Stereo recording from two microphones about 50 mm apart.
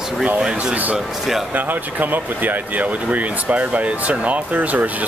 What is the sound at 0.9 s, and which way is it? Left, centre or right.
Speech, centre.